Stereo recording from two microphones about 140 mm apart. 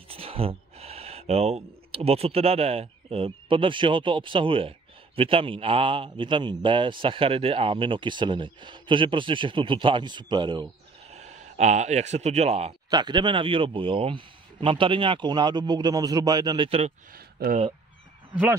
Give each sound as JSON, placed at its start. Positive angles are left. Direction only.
{"t": 0.1, "sound": "speech", "side_deg": -45}
{"t": 11.1, "sound": "speech", "side_deg": -55}
{"t": 12.9, "sound": "speech", "side_deg": -30}
{"t": 17.1, "sound": "a sound", "side_deg": -90}